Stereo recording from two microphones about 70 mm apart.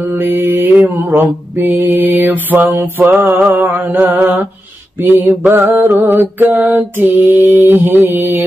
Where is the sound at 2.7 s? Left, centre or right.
Right.